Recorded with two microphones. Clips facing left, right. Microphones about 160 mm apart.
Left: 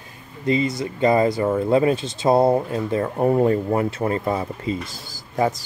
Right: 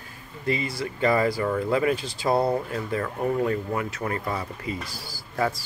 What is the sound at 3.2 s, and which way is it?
Speech, 35° left (ahead or behind).